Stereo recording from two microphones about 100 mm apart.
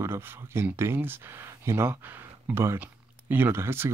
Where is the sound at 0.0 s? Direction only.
25° right (ahead or behind).